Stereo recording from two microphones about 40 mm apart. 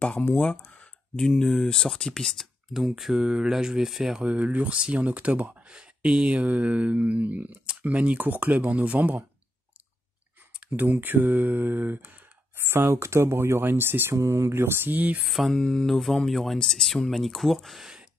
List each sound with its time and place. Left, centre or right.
0.2 s speech: left
1.2 s speech: centre
2.7 s speech: centre
3.2 s mantra: centre
4.2 s speech: right
5.7 s speech: right
8.7 s mantra: right
10.9 s mantra: right
12.5 s speech: right
14.9 s mantra: right
15.2 s speech: centre
15.5 s mantra: left
15.9 s speech: centre